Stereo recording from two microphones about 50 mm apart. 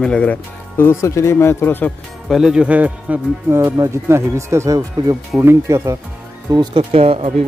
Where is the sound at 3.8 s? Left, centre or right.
Right.